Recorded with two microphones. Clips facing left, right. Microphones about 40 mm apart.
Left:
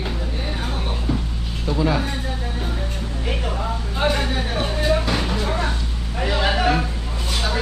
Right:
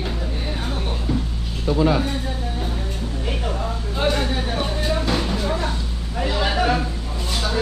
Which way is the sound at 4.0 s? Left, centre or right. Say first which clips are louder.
Even; centre.